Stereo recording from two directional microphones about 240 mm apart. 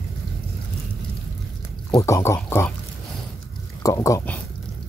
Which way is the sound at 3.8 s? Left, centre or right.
Centre.